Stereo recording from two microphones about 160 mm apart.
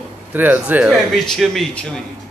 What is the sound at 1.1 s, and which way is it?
Speech, centre (ahead or behind).